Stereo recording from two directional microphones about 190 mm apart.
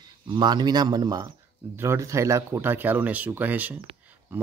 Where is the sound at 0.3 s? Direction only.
25° right (ahead or behind).